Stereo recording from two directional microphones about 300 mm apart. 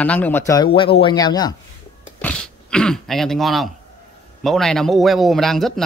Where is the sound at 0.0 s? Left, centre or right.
Centre.